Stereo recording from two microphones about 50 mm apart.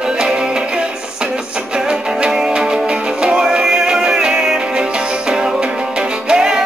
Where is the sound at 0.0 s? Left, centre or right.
Centre.